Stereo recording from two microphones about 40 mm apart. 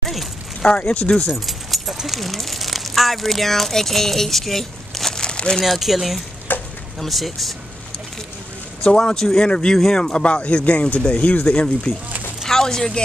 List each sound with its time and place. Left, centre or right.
0.0 s a sound: centre
0.6 s speech: left
1.3 s keys jangling: centre
2.0 s speech: centre
5.2 s crumpling: left
5.6 s speech: centre
6.5 s frying: left
7.0 s speech: centre
8.8 s a man's voice: centre
9.5 s speech: left
12.4 s a sound: centre